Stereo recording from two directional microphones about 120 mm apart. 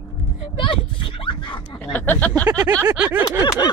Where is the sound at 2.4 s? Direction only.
30° right (ahead or behind).